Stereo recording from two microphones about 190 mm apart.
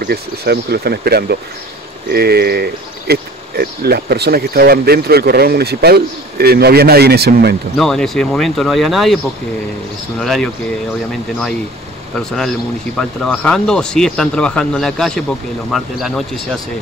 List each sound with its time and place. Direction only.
0.1 s speech: 55° right (ahead or behind)
7.7 s speech: 5° left (ahead or behind)
12.2 s speech: 5° left (ahead or behind)